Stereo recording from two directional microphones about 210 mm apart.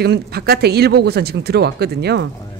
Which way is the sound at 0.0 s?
50° right (ahead or behind).